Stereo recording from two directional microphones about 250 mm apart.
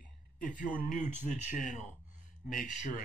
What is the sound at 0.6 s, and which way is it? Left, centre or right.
A man's voice, left.